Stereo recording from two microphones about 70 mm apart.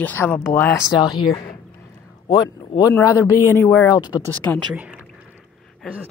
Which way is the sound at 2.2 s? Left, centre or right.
Left.